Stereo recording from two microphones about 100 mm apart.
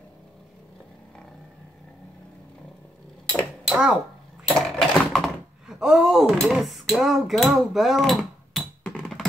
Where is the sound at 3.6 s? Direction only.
10° right (ahead or behind).